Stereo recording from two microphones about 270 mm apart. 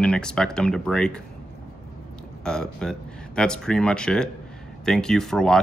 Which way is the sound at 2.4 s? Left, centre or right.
Centre.